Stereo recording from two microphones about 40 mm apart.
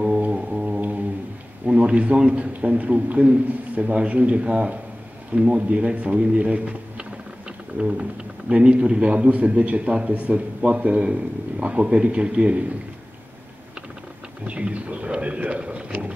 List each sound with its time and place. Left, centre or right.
0.0 s music: right
0.7 s a sound: right
1.7 s a sound: right
2.2 s a man's voice: right
9.2 s a man's voice: right
14.4 s a man's voice: right